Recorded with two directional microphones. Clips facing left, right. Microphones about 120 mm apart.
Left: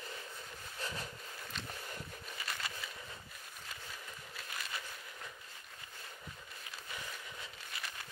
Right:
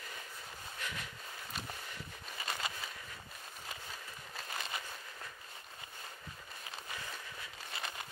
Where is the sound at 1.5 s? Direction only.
10° right (ahead or behind).